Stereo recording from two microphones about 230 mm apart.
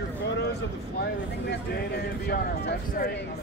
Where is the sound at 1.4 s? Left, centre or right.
Left.